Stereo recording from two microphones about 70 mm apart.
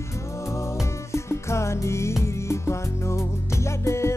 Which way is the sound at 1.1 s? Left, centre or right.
Left.